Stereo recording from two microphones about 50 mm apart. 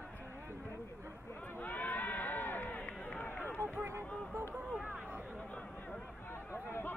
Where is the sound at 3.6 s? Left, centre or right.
Right.